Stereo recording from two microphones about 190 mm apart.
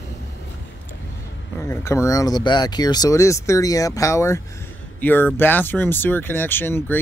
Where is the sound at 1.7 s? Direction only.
15° left (ahead or behind).